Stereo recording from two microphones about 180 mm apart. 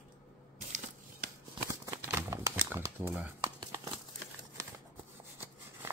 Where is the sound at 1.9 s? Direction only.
10° right (ahead or behind).